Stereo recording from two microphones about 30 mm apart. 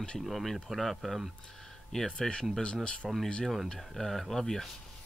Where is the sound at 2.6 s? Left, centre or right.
Left.